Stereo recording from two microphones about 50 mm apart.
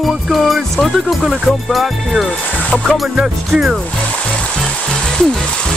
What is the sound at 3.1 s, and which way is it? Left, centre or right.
Music, centre.